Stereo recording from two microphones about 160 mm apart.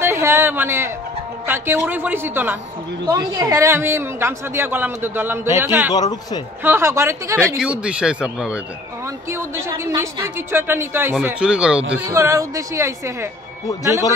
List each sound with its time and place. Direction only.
0.0 s speech: 15° right (ahead or behind)
5.9 s speech: 25° left (ahead or behind)
6.6 s speech: 15° right (ahead or behind)
7.5 s speech: 5° right (ahead or behind)
9.3 s speech: 15° right (ahead or behind)
12.1 s speech: 20° right (ahead or behind)